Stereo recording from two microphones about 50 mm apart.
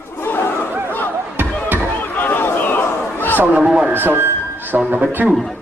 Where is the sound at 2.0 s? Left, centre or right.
Left.